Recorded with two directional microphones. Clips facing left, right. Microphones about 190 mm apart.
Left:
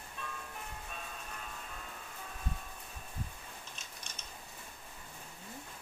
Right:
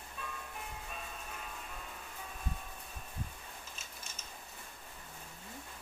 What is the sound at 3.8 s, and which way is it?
Typing, 5° right (ahead or behind).